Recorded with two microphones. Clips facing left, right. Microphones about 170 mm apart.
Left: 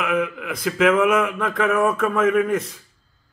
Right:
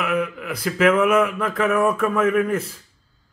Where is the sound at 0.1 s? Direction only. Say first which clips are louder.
Left 1 dB; centre (ahead or behind).